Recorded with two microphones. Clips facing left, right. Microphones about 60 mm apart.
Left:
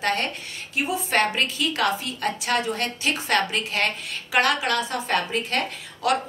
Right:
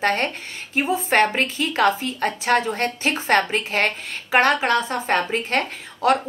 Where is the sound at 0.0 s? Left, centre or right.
Right.